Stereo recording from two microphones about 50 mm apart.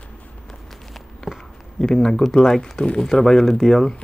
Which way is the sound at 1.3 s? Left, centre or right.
Centre.